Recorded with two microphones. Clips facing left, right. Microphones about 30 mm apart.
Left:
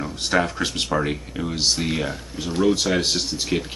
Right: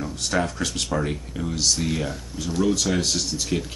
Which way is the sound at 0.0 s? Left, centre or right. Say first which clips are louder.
Left 3 dB; left.